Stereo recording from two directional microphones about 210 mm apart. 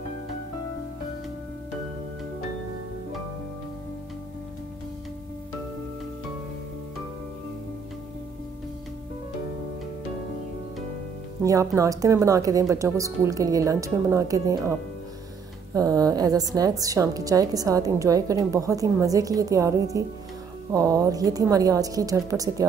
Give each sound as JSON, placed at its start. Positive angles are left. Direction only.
{"t": 11.4, "sound": "a woman's voice", "side_deg": -15}
{"t": 15.7, "sound": "a woman's voice", "side_deg": -15}